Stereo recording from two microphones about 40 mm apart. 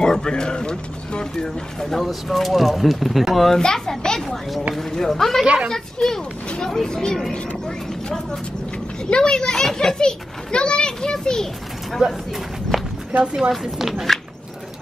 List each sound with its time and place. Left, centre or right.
0.0 s speech: centre
2.0 s speech: centre
3.5 s a child's voice: centre
4.2 s a child's voice: centre
12.0 s speech: right
13.4 s speech: centre